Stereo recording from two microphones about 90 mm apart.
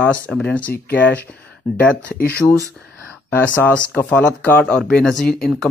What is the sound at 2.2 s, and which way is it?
Speech, 15° left (ahead or behind).